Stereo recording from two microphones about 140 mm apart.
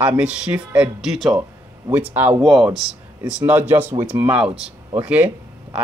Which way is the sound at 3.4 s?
15° right (ahead or behind).